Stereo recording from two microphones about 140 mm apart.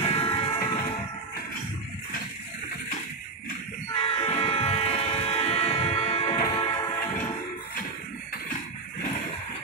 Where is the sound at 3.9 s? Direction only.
45° left (ahead or behind).